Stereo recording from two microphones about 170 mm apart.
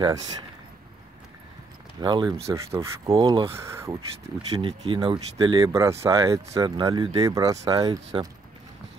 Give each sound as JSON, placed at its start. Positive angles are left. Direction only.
{"t": 2.0, "sound": "speech", "side_deg": -25}
{"t": 2.4, "sound": "speech", "side_deg": -15}
{"t": 3.1, "sound": "speech", "side_deg": -30}
{"t": 3.5, "sound": "speech", "side_deg": -15}
{"t": 4.5, "sound": "speech", "side_deg": -30}
{"t": 5.7, "sound": "speech", "side_deg": -15}